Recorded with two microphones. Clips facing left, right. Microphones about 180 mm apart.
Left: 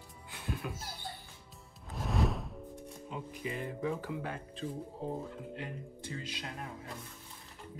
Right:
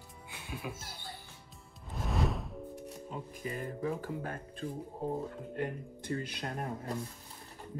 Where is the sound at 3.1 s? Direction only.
45° right (ahead or behind).